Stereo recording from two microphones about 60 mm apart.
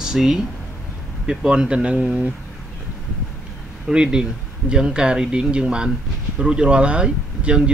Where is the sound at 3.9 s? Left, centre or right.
Centre.